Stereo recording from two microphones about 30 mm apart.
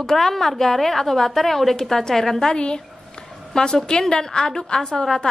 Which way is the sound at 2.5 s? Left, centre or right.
Left.